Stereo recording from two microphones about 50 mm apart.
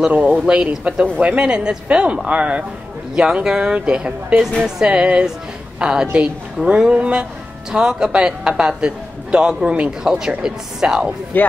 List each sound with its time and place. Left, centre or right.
0.1 s a woman's voice: right
11.3 s a man's voice: left